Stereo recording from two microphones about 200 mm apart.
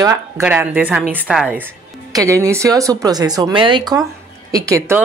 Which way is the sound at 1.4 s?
5° right (ahead or behind).